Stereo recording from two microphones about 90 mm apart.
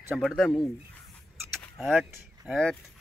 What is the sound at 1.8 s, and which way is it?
Speech, 5° right (ahead or behind).